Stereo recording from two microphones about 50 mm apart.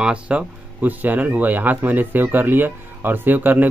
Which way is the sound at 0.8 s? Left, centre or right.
Right.